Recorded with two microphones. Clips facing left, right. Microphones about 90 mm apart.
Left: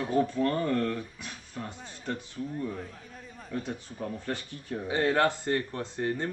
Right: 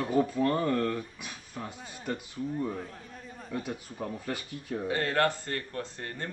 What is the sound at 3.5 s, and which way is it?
Speech, 5° right (ahead or behind).